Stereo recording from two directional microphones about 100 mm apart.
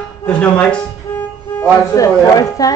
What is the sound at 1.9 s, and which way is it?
Speech, 35° left (ahead or behind).